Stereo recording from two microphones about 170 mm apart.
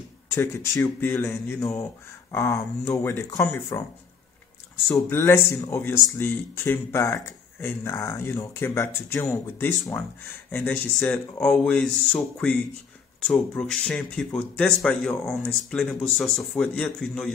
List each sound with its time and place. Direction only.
0.3 s speech: 15° left (ahead or behind)
4.8 s speech: 15° left (ahead or behind)